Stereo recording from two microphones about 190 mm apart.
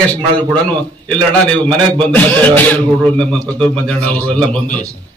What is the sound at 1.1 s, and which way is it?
A man's voice, 5° left (ahead or behind).